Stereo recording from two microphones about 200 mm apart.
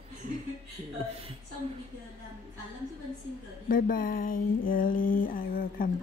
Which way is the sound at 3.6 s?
45° left (ahead or behind).